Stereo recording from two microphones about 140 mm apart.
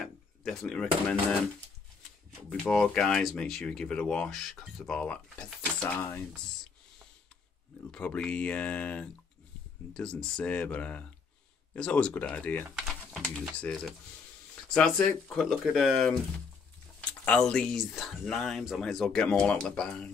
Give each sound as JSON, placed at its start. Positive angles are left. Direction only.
{"t": 0.0, "sound": "door", "side_deg": 0}
{"t": 2.6, "sound": "speech", "side_deg": 5}
{"t": 7.9, "sound": "speech", "side_deg": 5}
{"t": 12.6, "sound": "speech", "side_deg": -5}
{"t": 17.2, "sound": "speech", "side_deg": 5}